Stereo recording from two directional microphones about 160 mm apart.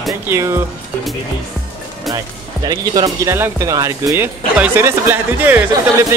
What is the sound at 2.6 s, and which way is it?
Speech, 25° right (ahead or behind).